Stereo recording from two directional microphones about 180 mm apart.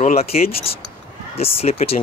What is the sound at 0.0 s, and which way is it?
Speech, 35° left (ahead or behind).